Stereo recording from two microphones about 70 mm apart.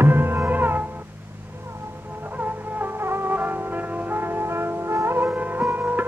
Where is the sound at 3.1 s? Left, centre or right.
Right.